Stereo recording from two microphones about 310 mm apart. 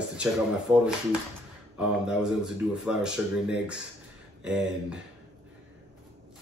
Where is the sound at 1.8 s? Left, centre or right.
Centre.